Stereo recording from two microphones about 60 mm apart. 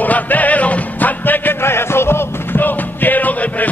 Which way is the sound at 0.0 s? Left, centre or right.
Left.